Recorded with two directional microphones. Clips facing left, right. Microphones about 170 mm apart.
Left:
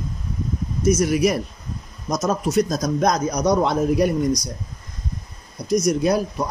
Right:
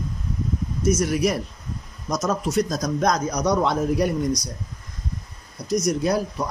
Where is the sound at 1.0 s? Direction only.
10° left (ahead or behind).